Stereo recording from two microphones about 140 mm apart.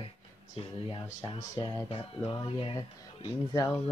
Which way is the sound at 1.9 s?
40° left (ahead or behind).